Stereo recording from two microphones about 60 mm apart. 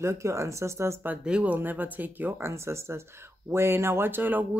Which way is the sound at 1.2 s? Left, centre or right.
Centre.